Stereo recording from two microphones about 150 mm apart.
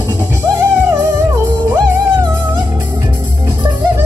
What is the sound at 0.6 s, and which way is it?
Music, 20° right (ahead or behind).